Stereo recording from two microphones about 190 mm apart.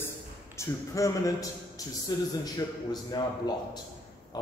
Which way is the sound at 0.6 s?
15° left (ahead or behind).